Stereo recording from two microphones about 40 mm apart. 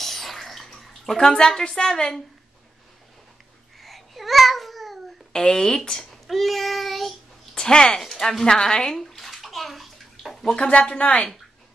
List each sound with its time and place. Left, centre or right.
0.0 s bathtub: centre
1.1 s a woman's voice: centre
3.8 s babbling: centre
5.3 s speech: centre
6.2 s child singing: centre
7.5 s speech: centre
9.0 s bathtub: centre
10.5 s speech: left